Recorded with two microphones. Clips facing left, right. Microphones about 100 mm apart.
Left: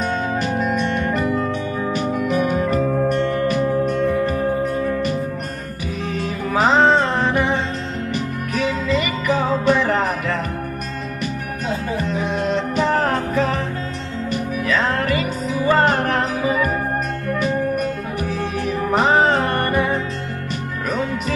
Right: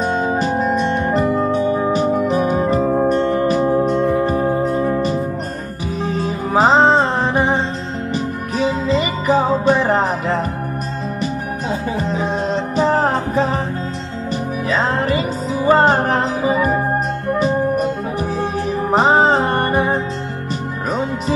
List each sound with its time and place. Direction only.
0.0 s music: 35° right (ahead or behind)
12.0 s music: 35° right (ahead or behind)